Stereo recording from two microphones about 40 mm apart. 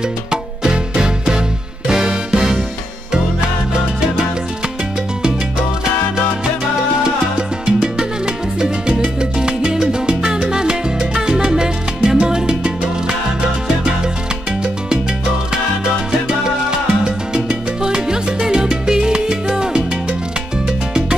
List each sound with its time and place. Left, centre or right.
0.3 s music: centre
7.0 s salsa music: right
15.5 s salsa music: right